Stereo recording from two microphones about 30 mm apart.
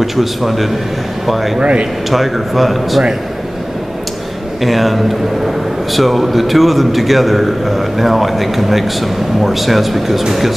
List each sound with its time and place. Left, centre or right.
0.0 s a man's voice: centre
1.6 s speech: right
2.0 s a man's voice: centre
4.6 s a man's voice: centre